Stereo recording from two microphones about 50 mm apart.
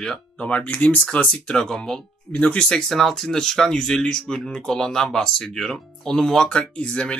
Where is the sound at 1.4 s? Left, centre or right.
Centre.